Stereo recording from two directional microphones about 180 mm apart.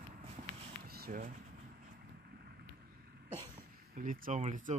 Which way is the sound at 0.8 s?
55° right (ahead or behind).